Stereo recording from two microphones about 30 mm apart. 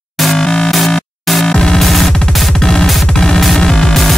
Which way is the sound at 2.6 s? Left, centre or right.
Centre.